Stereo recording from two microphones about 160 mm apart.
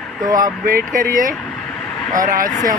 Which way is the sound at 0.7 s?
65° right (ahead or behind).